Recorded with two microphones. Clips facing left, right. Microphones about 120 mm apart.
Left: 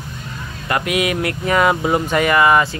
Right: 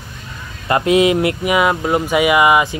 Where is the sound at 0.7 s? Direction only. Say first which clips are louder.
Right 6 dB; 25° right (ahead or behind).